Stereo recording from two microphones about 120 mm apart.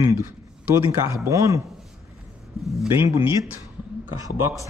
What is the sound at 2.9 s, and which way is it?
Speech, 20° right (ahead or behind).